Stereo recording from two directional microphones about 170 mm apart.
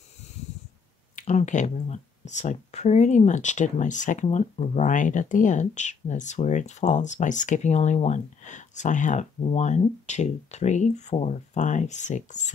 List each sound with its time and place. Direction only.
1.1 s speech: 45° left (ahead or behind)